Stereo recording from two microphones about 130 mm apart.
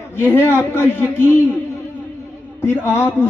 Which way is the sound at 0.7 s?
20° left (ahead or behind).